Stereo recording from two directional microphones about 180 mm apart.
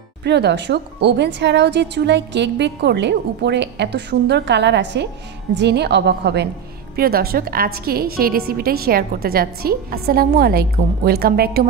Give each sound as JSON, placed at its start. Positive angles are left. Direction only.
{"t": 0.2, "sound": "a woman's voice", "side_deg": -70}
{"t": 7.0, "sound": "a woman's voice", "side_deg": -55}